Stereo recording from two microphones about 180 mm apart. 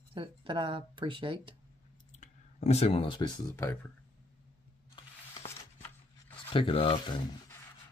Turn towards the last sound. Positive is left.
turn(degrees=30)  # may be behind; listen again after turning